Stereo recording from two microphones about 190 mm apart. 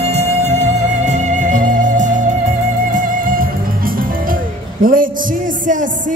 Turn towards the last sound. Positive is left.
turn(degrees=-45)  # may be behind; listen again after turning